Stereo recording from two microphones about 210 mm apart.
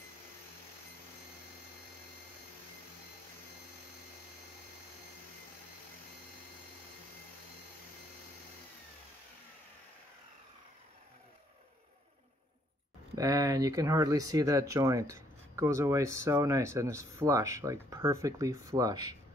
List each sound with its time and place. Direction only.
13.1 s speech: 15° right (ahead or behind)